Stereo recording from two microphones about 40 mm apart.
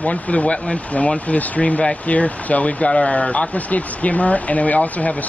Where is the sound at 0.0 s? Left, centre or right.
Left.